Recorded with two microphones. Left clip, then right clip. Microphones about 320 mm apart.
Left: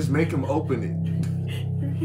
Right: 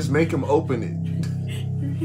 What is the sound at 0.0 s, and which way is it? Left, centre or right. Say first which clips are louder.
Speech: right 3 dB; centre.